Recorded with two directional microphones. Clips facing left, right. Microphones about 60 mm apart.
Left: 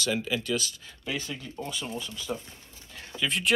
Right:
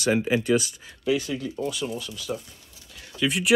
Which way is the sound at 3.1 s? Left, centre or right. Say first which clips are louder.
Right 3 dB; centre.